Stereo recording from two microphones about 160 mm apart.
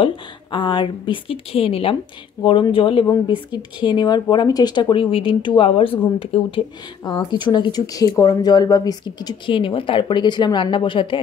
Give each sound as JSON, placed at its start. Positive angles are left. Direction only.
{"t": 0.0, "sound": "speech", "side_deg": 30}